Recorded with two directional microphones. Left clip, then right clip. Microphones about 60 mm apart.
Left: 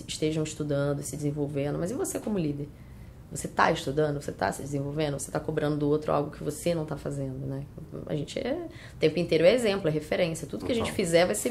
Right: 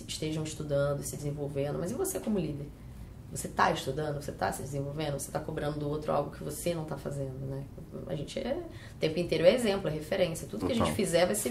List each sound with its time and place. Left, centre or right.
0.1 s speech: left
3.5 s speech: left